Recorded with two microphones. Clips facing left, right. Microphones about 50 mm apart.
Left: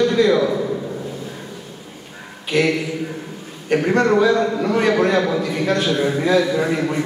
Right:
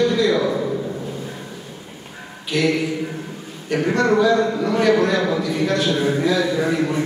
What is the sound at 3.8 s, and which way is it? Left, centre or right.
A man's voice, left.